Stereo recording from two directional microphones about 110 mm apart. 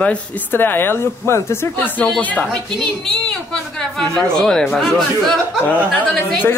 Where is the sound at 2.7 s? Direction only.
5° left (ahead or behind).